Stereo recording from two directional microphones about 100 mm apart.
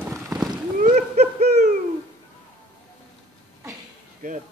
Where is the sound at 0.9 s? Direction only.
90° right.